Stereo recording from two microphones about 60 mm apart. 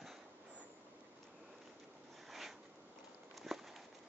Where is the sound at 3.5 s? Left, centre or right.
Centre.